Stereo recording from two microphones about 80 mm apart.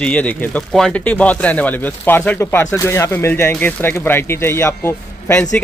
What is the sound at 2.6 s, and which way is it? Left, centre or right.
Speech, left.